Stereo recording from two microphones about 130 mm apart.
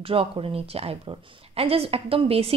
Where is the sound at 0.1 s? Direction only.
45° right (ahead or behind).